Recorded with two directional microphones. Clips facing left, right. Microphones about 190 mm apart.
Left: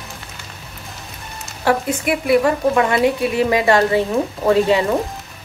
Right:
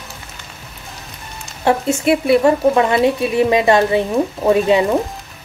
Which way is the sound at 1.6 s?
25° right (ahead or behind).